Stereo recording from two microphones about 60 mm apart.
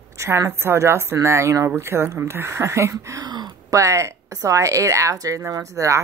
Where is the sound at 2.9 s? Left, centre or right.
Right.